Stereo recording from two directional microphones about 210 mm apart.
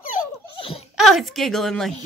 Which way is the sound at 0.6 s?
25° left (ahead or behind).